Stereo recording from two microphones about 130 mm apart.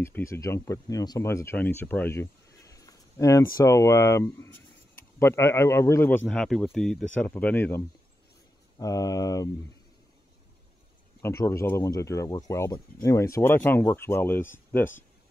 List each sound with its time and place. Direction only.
0.0 s speech: 20° left (ahead or behind)
6.2 s speech: 5° left (ahead or behind)
8.7 s speech: 25° left (ahead or behind)
11.2 s speech: 20° left (ahead or behind)